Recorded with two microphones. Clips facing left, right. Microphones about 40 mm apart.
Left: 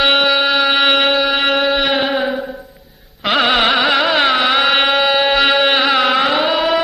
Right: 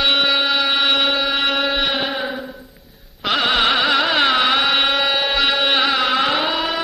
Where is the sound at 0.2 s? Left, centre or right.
Centre.